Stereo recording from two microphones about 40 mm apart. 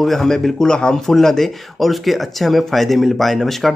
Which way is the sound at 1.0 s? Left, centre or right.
Centre.